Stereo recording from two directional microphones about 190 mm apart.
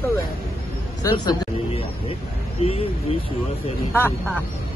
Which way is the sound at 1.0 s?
20° left (ahead or behind).